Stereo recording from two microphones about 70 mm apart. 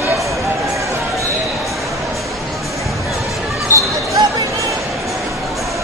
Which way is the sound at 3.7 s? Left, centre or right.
Left.